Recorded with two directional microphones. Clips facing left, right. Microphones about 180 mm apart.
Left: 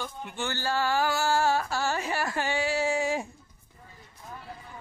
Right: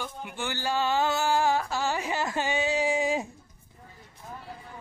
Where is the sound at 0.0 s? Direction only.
10° right (ahead or behind).